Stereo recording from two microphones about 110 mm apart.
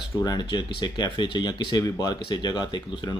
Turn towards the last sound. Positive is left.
turn(degrees=40)  # may be behind; listen again after turning